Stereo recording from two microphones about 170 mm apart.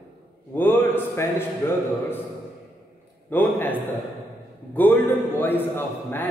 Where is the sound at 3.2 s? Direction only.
10° left (ahead or behind).